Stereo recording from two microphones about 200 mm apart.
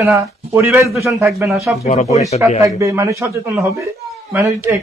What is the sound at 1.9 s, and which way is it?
Speech, 30° left (ahead or behind).